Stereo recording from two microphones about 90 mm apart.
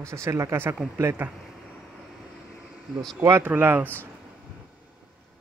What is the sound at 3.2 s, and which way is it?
Speech, 30° right (ahead or behind).